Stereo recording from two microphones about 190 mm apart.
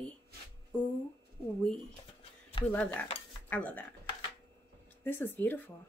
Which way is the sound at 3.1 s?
30° left (ahead or behind).